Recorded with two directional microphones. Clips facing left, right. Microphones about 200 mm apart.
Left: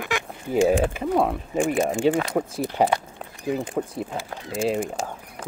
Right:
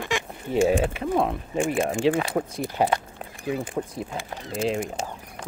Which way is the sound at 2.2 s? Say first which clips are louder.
Left 1 dB; 5° right (ahead or behind).